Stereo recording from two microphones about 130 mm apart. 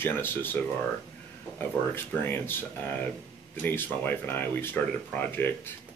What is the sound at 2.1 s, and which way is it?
Speech, 15° left (ahead or behind).